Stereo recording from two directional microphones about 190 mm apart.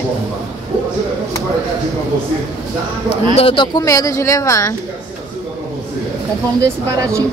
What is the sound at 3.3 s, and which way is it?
Speech, 25° left (ahead or behind).